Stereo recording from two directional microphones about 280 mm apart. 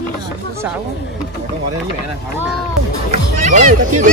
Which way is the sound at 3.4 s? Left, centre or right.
Right.